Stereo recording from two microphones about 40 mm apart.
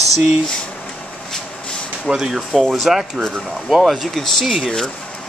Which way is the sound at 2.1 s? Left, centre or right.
Centre.